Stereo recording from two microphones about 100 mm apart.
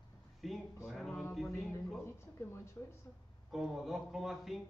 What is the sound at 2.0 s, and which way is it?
Speech, 25° left (ahead or behind).